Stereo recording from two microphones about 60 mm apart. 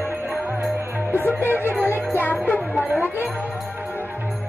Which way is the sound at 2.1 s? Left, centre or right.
Left.